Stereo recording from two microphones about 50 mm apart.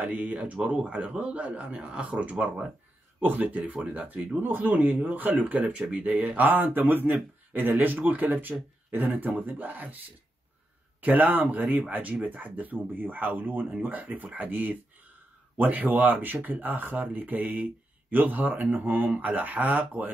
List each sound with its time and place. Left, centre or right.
0.0 s a man's voice: right
3.2 s speech: right
4.4 s speech: right
11.0 s speech: right